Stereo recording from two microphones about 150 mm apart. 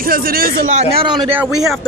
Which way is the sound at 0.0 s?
75° right (ahead or behind).